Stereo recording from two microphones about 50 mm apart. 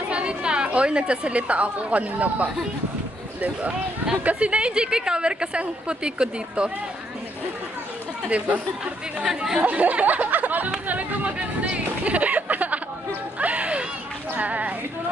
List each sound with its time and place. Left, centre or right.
0.1 s a woman's voice: right
8.3 s a woman's voice: right
9.3 s speech: centre
9.6 s speech: right
10.9 s music: right
13.4 s a sound: right
14.3 s speech: right